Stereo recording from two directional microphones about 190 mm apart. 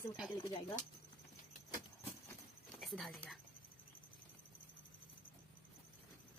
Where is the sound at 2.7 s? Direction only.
Centre (ahead or behind).